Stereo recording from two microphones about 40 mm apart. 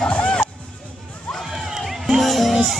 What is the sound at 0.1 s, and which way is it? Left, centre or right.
Music, left.